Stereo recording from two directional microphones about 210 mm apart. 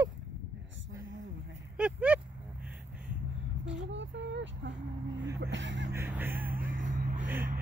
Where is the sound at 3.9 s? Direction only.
60° right (ahead or behind).